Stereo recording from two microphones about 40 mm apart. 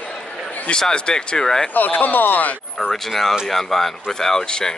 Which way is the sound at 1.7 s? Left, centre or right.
Left.